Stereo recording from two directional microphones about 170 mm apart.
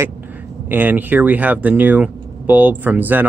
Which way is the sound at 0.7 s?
10° right (ahead or behind).